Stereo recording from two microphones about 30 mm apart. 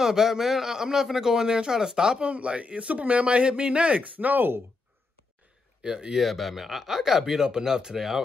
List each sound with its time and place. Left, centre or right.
0.0 s speech: centre
2.2 s speech: right
4.0 s speech: right
5.9 s speech: right
6.1 s speech: centre